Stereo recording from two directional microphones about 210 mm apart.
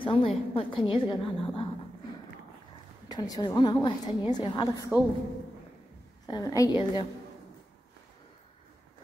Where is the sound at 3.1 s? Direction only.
20° left (ahead or behind).